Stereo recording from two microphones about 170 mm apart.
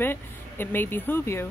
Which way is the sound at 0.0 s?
10° left (ahead or behind).